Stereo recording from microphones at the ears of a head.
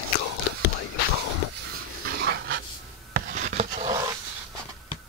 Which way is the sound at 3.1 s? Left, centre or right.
Right.